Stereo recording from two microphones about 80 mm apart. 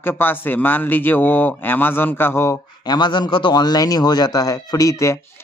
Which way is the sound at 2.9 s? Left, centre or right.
Left.